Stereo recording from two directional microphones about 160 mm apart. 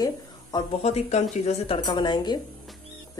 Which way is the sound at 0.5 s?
25° left (ahead or behind).